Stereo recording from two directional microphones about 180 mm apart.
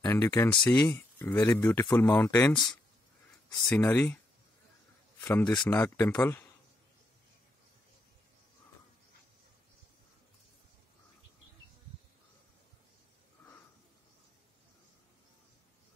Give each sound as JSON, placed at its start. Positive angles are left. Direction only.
{"t": 0.0, "sound": "speech", "side_deg": 20}
{"t": 3.6, "sound": "speech", "side_deg": 10}
{"t": 5.2, "sound": "speech", "side_deg": 10}